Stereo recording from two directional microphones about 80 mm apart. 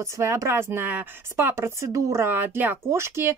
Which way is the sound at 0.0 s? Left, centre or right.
Right.